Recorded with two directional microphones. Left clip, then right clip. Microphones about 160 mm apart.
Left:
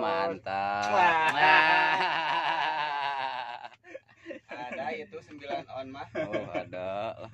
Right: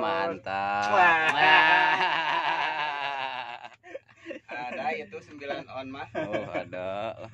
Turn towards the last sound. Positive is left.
turn(degrees=-5)  # may be behind; listen again after turning